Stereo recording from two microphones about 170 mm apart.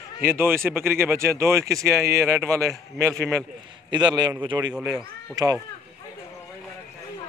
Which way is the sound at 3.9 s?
25° right (ahead or behind).